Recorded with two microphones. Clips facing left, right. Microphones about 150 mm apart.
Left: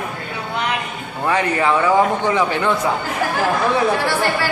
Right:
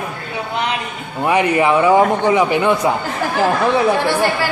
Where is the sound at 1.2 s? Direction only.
15° right (ahead or behind).